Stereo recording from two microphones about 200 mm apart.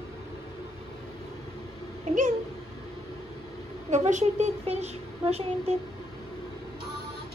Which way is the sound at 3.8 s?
35° right (ahead or behind).